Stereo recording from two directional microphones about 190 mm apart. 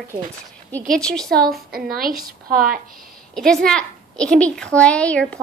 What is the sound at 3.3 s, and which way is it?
A child's voice, 5° left (ahead or behind).